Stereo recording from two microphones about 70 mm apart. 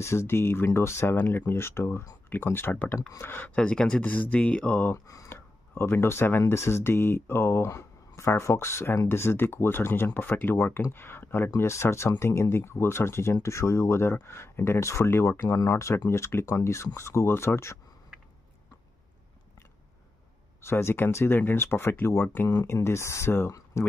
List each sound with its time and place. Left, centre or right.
0.0 s speech: left
3.5 s speech: centre
4.9 s speech: left
5.3 s speech: left
15.4 s speech: left
20.6 s speech: left
22.8 s speech: left